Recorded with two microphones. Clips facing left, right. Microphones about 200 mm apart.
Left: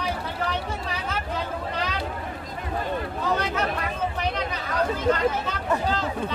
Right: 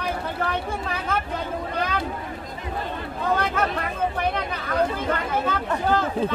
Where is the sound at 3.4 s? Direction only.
55° right (ahead or behind).